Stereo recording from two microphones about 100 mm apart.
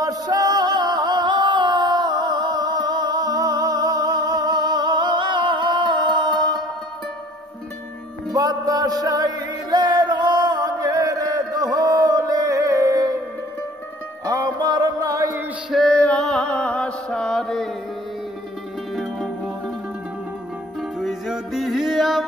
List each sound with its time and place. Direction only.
0.0 s music: 40° right (ahead or behind)
8.3 s music: 40° right (ahead or behind)
14.2 s music: 45° right (ahead or behind)
15.7 s mantra: 5° left (ahead or behind)
18.9 s music: centre (ahead or behind)
21.0 s music: centre (ahead or behind)